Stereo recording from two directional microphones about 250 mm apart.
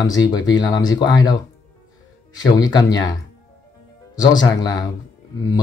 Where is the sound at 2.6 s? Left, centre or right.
Centre.